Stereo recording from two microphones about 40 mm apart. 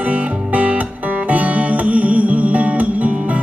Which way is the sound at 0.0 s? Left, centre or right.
Right.